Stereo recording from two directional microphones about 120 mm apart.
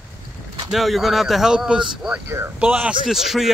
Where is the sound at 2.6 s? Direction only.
10° right (ahead or behind).